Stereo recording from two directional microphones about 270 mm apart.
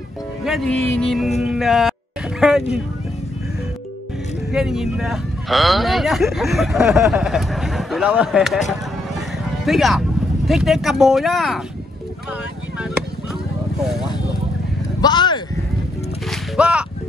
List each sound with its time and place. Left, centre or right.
0.4 s speech: centre
4.5 s speech: centre
9.7 s speech: centre
12.3 s vehicle: centre
15.0 s speech: centre
16.3 s music: centre